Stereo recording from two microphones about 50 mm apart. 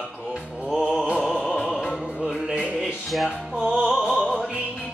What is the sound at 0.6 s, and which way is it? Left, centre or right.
Music, centre.